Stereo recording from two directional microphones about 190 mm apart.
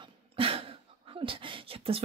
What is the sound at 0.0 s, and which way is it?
Speech, 30° right (ahead or behind).